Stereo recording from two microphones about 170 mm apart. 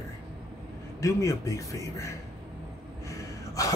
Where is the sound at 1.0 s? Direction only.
20° left (ahead or behind).